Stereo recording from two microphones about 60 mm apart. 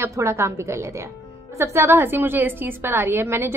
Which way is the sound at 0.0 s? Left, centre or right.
Right.